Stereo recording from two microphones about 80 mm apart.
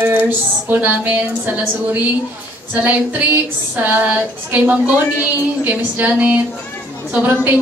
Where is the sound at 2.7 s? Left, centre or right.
Right.